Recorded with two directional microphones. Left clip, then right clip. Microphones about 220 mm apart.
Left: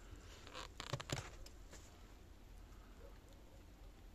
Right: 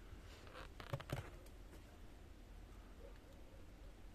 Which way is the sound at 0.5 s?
35° left (ahead or behind).